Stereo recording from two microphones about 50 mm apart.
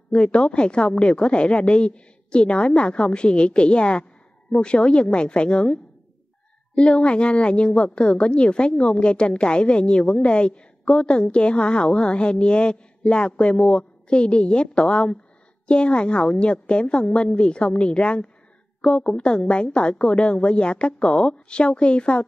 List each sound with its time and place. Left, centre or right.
0.1 s a woman's voice: left